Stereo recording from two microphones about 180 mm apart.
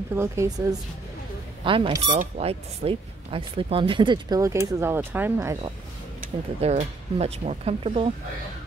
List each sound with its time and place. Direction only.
0.1 s a woman's voice: 15° right (ahead or behind)
1.6 s speech: 30° right (ahead or behind); by 5.6 s 15° right (ahead or behind)
6.6 s speech: 35° right (ahead or behind)